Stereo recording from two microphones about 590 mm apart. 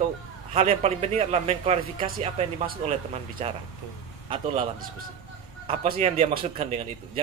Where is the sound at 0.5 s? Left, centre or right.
Centre.